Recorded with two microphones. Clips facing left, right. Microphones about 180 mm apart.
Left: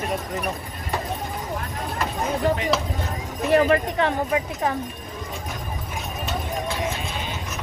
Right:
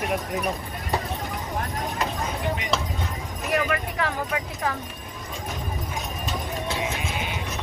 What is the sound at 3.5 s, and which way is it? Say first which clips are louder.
Speech: left 7 dB; 30° left (ahead or behind).